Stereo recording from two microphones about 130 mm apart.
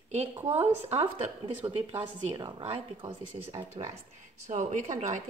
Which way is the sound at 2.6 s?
50° right (ahead or behind).